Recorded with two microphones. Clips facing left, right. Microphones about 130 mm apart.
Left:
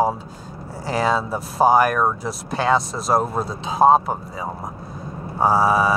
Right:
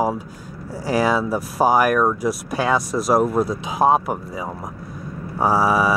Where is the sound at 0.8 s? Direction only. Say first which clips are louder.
Right 2 dB; 25° left (ahead or behind).